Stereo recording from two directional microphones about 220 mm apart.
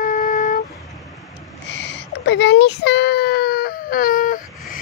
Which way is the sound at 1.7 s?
55° left (ahead or behind).